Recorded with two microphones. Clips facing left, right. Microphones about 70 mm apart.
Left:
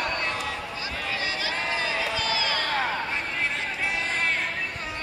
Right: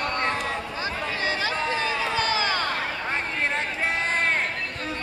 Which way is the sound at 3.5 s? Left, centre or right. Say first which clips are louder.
Right 3 dB; right.